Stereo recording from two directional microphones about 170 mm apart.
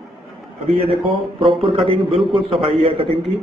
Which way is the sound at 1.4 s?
30° right (ahead or behind).